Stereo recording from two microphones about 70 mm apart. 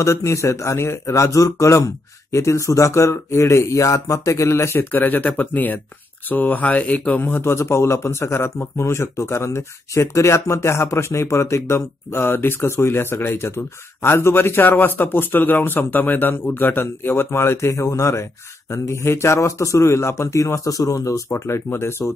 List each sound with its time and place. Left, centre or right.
0.0 s speech: left
21.1 s speech: left